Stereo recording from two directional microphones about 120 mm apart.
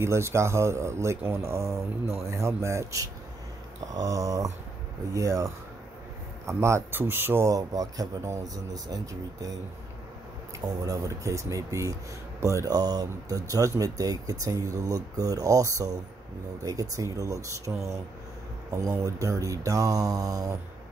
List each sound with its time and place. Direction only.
0.0 s speech: 20° right (ahead or behind)
10.8 s speech: 30° right (ahead or behind)